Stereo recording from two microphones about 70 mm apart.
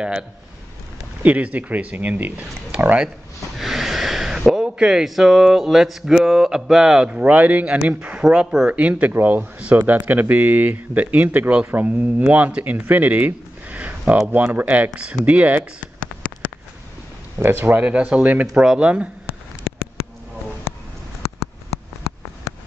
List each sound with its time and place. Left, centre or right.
1.2 s speech: right
2.7 s a sound: centre
3.5 s snort: centre
4.6 s speech: centre
7.1 s speech: centre
8.7 s speech: centre
12.8 s a sound: right
14.2 s speech: right
16.2 s a sound: left
17.4 s speech: right
17.8 s speech: centre
18.5 s speech: centre
18.8 s speech: centre